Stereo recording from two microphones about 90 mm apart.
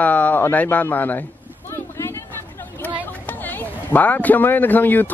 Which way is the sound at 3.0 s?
20° left (ahead or behind).